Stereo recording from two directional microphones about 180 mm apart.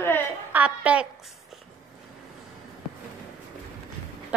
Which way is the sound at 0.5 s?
10° right (ahead or behind).